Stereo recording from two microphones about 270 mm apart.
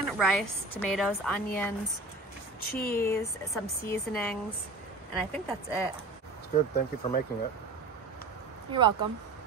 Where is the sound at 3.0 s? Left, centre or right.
Centre.